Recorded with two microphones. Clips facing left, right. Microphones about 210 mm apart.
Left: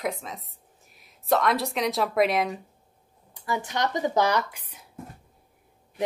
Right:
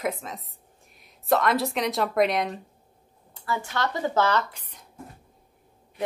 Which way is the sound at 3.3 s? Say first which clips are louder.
Left 1 dB; 15° left (ahead or behind).